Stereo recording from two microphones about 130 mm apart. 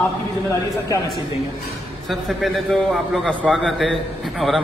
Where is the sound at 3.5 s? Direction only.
Centre (ahead or behind).